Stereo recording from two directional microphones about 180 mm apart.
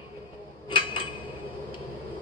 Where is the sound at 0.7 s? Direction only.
30° left (ahead or behind).